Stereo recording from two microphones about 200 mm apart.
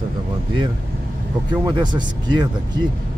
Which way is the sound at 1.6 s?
20° right (ahead or behind).